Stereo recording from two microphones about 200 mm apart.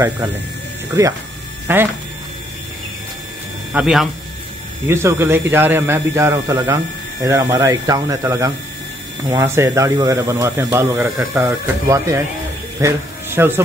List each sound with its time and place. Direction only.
1.7 s speech: 10° right (ahead or behind)
3.7 s speech: 5° right (ahead or behind)